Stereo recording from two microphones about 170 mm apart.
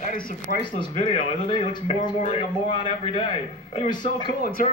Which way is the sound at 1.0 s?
40° left (ahead or behind).